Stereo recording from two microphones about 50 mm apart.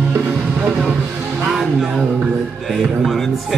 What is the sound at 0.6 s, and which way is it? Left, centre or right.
Vehicle, right.